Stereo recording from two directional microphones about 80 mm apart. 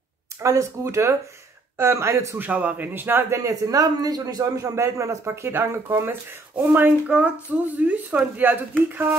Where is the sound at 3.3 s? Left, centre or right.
Right.